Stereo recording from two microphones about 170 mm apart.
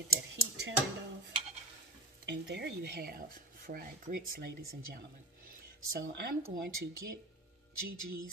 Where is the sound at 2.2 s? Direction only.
85° right; by 6.6 s 70° right (ahead or behind).